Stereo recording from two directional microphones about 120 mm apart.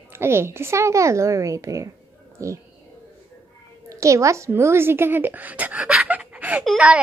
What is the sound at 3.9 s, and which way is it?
Speech, 25° right (ahead or behind).